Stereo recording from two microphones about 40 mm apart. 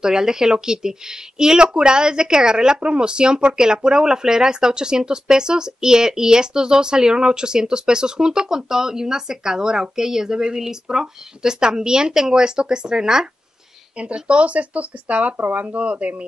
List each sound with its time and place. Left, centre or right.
0.0 s speech: centre
13.9 s speech: right